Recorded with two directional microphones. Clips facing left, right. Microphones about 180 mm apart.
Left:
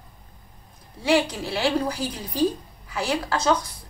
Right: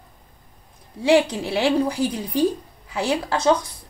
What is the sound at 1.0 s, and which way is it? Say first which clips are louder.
A woman's voice: right 4 dB; 20° right (ahead or behind).